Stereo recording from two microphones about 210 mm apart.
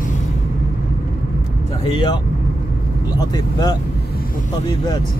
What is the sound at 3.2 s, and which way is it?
Speech, 15° left (ahead or behind).